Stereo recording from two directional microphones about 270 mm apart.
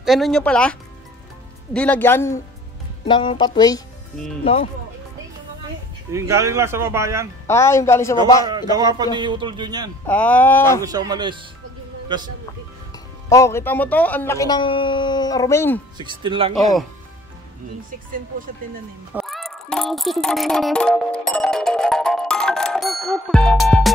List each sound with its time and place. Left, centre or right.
0.0 s speech: centre
6.1 s a man's voice: centre
7.4 s speech: centre
8.5 s a man's voice: centre
10.0 s speech: centre
10.8 s a man's voice: centre
12.9 s speech: centre
16.0 s a man's voice: centre
19.1 s music: centre